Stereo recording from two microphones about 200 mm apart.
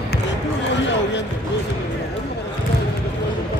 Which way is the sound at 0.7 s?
65° left (ahead or behind).